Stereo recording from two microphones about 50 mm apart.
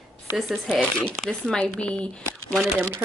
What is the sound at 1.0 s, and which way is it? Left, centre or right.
Speech, centre.